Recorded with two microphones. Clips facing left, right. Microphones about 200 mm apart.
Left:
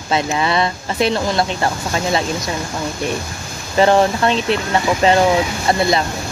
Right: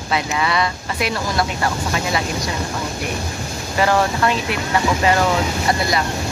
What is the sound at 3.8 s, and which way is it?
Speech, 25° left (ahead or behind).